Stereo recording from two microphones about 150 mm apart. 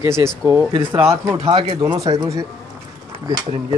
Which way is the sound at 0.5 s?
20° right (ahead or behind).